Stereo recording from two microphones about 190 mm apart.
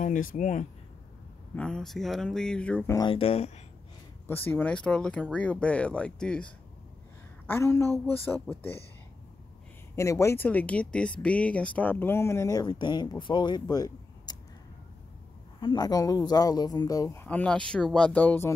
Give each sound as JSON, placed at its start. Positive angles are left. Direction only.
{"t": 0.0, "sound": "speech", "side_deg": 45}
{"t": 1.5, "sound": "speech", "side_deg": 5}
{"t": 3.0, "sound": "speech", "side_deg": 30}
{"t": 4.3, "sound": "speech", "side_deg": 10}
{"t": 7.4, "sound": "speech", "side_deg": 10}
{"t": 9.9, "sound": "speech", "side_deg": 15}
{"t": 15.6, "sound": "speech", "side_deg": 20}